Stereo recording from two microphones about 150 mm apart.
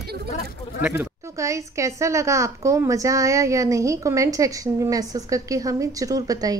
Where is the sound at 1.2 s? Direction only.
20° right (ahead or behind).